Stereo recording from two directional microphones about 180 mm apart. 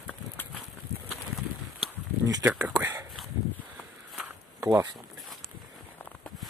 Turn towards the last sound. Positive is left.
turn(degrees=-10)  # may be behind; listen again after turning